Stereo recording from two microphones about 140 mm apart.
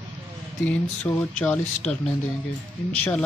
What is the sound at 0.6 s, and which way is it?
Speech, 10° left (ahead or behind).